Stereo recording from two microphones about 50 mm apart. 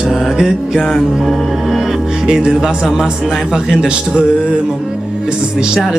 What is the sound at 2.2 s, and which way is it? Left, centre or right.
Speech, centre.